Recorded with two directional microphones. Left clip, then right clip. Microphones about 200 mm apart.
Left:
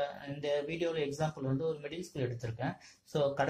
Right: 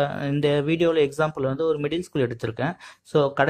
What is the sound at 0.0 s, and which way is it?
Speech, 35° right (ahead or behind).